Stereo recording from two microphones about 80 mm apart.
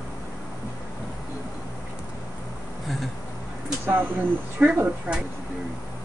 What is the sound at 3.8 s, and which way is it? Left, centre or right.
Speech, right.